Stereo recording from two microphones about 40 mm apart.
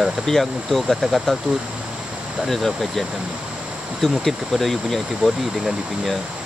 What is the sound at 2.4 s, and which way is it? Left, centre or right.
Speech, centre.